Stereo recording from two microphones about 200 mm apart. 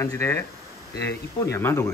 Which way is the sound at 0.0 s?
15° left (ahead or behind).